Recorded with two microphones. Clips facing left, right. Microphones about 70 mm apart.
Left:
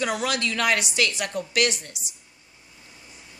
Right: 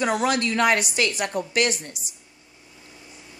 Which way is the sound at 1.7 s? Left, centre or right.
Right.